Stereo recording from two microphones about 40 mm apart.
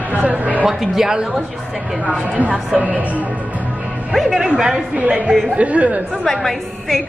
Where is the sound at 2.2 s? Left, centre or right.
Right.